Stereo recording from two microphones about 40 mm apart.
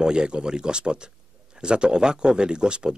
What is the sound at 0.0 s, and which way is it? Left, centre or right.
A man's voice, right.